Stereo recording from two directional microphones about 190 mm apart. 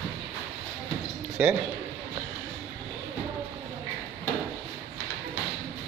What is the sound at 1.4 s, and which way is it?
Speech, 5° right (ahead or behind).